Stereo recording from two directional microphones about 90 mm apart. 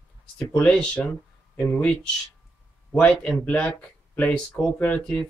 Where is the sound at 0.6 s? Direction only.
10° left (ahead or behind).